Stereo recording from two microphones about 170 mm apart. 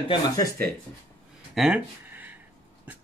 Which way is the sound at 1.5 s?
5° right (ahead or behind).